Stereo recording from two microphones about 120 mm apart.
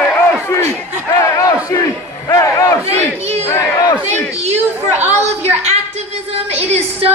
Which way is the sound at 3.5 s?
30° left (ahead or behind).